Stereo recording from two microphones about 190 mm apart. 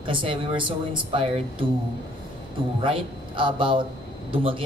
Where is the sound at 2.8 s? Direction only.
25° right (ahead or behind).